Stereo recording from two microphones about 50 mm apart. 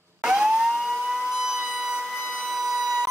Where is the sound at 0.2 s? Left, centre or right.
Centre.